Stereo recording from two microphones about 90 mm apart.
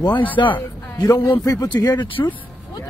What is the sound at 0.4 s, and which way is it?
Speech, 60° left (ahead or behind).